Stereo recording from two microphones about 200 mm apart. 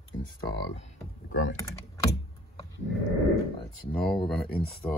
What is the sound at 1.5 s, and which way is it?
Typing, 15° left (ahead or behind).